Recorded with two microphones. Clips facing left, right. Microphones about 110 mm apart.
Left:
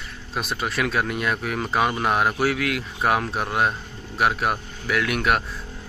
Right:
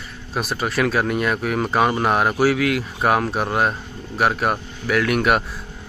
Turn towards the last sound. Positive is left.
turn(degrees=0)  # may be behind; listen again after turning